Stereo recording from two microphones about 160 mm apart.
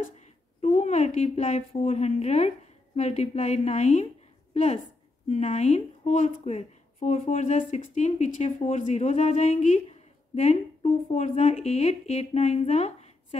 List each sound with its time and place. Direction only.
0.6 s a woman's voice: 45° left (ahead or behind)
5.3 s speech: 45° left (ahead or behind)